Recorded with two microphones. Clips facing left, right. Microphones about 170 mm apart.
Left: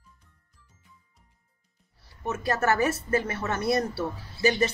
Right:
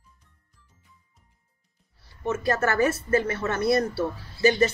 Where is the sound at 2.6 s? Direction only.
10° left (ahead or behind).